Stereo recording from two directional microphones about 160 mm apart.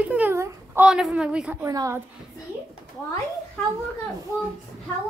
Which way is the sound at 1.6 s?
20° right (ahead or behind).